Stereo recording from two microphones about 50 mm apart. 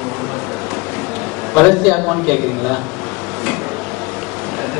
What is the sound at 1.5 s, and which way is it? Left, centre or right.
A man's voice, centre.